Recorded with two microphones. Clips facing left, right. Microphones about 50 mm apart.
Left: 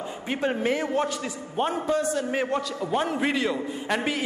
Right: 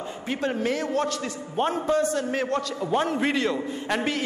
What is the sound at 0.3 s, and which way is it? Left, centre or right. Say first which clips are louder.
Speech: left 1 dB; centre.